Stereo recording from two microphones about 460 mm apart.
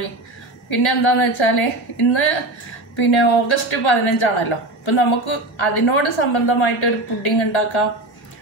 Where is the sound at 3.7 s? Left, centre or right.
Left.